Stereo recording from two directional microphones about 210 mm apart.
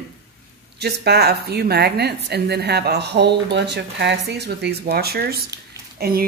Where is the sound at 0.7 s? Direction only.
50° right (ahead or behind).